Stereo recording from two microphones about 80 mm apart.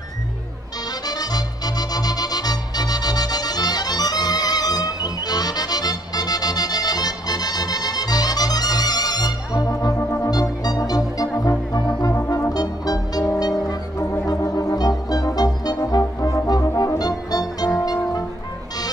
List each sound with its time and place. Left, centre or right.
1.0 s music: left
10.0 s music: left
10.3 s music: left
12.3 s brass instrument: left
13.3 s music: left
16.0 s brass instrument: left
17.7 s music: left